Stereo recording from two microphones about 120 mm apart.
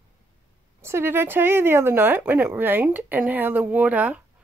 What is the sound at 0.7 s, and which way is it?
Speech, 20° right (ahead or behind).